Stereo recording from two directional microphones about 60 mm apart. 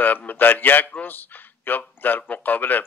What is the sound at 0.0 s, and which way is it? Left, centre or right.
Speech, left.